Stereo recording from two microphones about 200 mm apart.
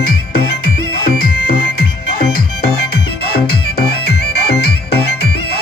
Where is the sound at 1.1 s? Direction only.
45° left (ahead or behind).